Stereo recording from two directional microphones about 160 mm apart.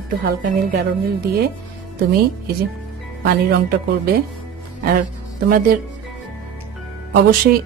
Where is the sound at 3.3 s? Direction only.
80° right.